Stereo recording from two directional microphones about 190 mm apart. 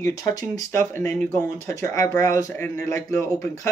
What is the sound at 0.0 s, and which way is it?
Speech, 15° left (ahead or behind).